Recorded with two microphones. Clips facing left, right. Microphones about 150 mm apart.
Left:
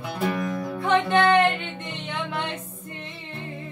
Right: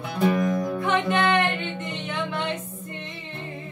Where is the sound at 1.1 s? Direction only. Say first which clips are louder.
Left 4 dB; 30° left (ahead or behind).